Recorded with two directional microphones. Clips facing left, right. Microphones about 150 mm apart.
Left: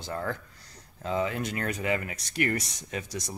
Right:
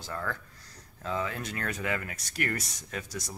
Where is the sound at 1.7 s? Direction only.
10° left (ahead or behind).